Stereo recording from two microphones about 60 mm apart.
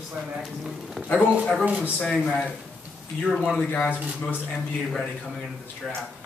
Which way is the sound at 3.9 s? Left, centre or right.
Left.